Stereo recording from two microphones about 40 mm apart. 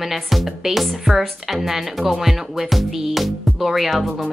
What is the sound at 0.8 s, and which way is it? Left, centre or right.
Speech, centre.